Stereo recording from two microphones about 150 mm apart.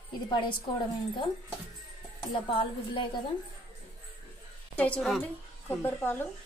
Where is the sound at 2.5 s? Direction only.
35° left (ahead or behind).